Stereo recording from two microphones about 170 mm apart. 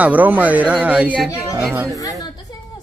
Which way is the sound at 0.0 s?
10° right (ahead or behind).